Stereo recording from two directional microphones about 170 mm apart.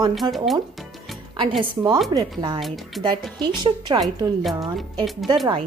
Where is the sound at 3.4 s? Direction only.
25° right (ahead or behind).